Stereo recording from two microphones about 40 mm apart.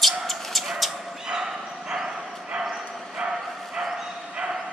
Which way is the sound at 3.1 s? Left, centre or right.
Right.